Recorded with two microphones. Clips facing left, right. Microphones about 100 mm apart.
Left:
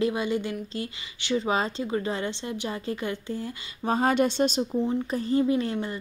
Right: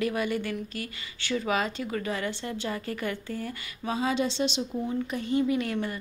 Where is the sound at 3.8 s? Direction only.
50° left (ahead or behind).